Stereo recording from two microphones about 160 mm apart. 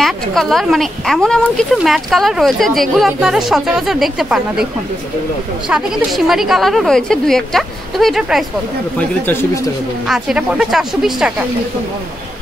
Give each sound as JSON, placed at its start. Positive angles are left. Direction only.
{"t": 0.0, "sound": "speech", "side_deg": 0}
{"t": 5.7, "sound": "speech", "side_deg": -5}
{"t": 9.2, "sound": "speech", "side_deg": 15}
{"t": 10.0, "sound": "speech", "side_deg": 0}